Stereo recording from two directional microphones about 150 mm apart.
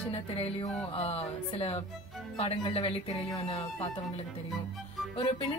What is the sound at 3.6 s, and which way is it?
Speech, 40° left (ahead or behind).